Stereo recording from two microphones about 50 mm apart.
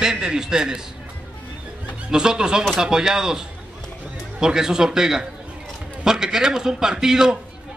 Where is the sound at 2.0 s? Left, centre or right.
Centre.